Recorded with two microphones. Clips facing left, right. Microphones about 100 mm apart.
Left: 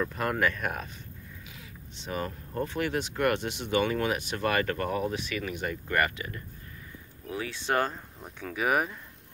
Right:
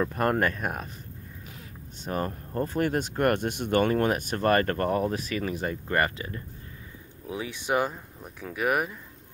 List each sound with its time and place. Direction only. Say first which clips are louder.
0.1 s speech: right 3 dB; 50° right (ahead or behind)
2.0 s speech: right 3 dB; 45° right (ahead or behind); by 6.4 s 30° right (ahead or behind)
7.2 s speech: right 1 dB; 20° right (ahead or behind); by 8.9 s centre (ahead or behind)